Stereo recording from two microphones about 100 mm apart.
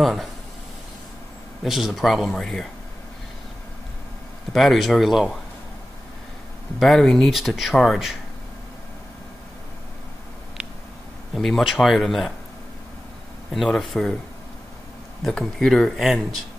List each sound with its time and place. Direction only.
0.0 s speech: centre (ahead or behind)
1.6 s speech: centre (ahead or behind)
4.5 s speech: centre (ahead or behind)
6.8 s speech: centre (ahead or behind)
11.3 s speech: centre (ahead or behind)
13.5 s speech: centre (ahead or behind)
15.2 s speech: 5° left (ahead or behind)